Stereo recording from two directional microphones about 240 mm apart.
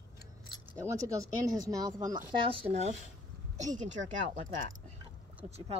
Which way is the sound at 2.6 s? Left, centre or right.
Right.